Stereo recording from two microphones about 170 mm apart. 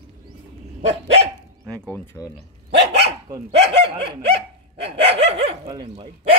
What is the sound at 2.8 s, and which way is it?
Dog, 80° right.